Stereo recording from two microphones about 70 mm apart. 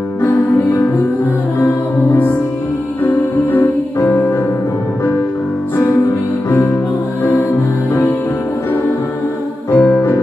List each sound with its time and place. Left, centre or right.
3.0 s music: left
6.5 s music: left
9.8 s music: centre